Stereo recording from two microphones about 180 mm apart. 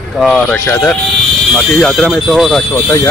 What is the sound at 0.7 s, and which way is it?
Speech, 10° left (ahead or behind).